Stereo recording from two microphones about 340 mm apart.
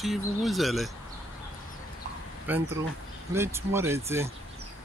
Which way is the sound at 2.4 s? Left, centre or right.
Centre.